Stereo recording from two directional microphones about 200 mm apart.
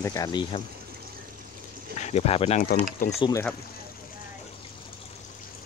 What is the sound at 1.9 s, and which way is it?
Speech, 35° left (ahead or behind).